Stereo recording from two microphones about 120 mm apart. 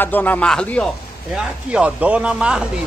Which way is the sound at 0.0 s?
15° left (ahead or behind).